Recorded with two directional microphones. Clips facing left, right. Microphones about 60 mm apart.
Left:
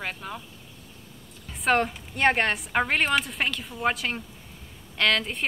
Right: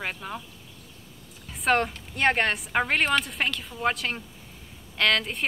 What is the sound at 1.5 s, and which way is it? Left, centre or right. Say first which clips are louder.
A woman's voice: even; centre.